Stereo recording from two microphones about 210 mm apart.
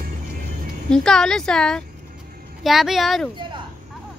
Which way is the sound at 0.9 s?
5° left (ahead or behind).